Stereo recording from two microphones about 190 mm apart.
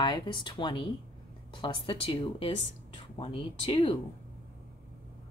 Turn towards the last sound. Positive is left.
turn(degrees=30)  # may be behind; listen again after turning